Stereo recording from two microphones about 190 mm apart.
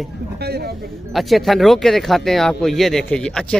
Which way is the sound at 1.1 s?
Centre (ahead or behind).